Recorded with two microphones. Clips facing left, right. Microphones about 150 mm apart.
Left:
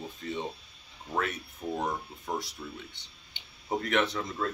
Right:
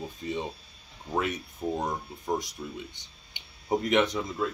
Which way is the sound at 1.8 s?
15° right (ahead or behind).